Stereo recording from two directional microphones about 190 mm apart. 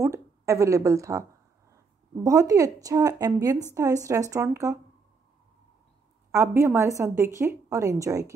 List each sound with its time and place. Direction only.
0.0 s a woman's voice: 15° right (ahead or behind)
2.2 s a woman's voice: 15° right (ahead or behind)
6.3 s a woman's voice: 15° right (ahead or behind)